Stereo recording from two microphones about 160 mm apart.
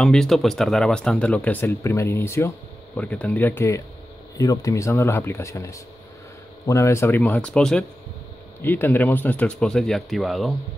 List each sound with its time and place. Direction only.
0.0 s speech: 5° left (ahead or behind)